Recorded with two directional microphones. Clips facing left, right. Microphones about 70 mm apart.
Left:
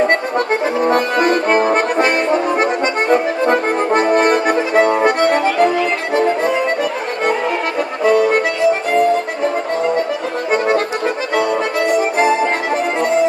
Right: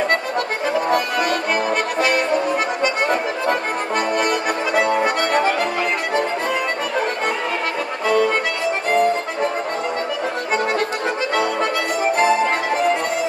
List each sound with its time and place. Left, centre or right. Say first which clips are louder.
0.8 s accordion: left 7 dB; left
8.0 s music: left 5 dB; left